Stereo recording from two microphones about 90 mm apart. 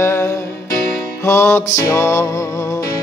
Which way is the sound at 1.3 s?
30° left (ahead or behind).